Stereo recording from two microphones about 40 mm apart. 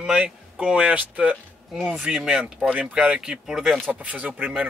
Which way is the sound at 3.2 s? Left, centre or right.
Centre.